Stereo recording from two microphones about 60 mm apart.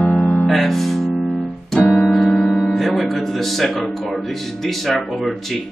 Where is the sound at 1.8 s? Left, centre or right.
Left.